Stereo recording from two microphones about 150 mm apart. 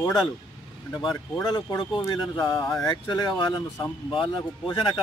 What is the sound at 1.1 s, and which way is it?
Speech, 25° left (ahead or behind).